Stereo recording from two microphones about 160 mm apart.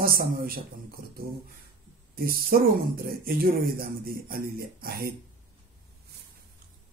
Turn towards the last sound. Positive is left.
turn(degrees=-70)  # may be behind; listen again after turning